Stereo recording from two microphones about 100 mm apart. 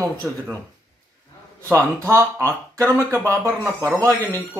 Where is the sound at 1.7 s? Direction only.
30° right (ahead or behind).